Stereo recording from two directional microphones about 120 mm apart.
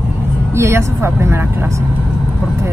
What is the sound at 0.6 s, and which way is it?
Speech, 20° right (ahead or behind).